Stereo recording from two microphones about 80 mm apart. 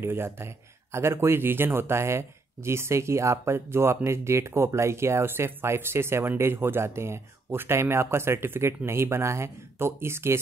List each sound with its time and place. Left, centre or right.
0.0 s speech: right